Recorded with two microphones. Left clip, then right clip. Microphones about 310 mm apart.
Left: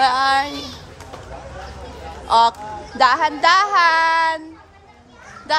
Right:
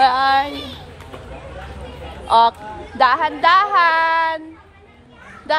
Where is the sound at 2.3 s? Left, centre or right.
Centre.